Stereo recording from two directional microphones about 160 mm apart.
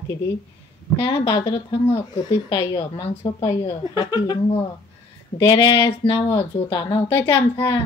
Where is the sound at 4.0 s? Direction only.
25° left (ahead or behind).